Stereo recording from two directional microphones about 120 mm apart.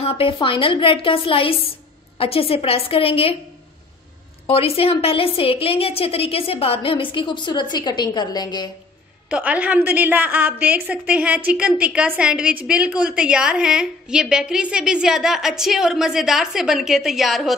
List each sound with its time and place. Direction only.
0.0 s a woman's voice: 50° left (ahead or behind)
4.5 s a woman's voice: 55° left (ahead or behind); by 8.6 s 35° left (ahead or behind)
9.3 s a woman's voice: 10° right (ahead or behind)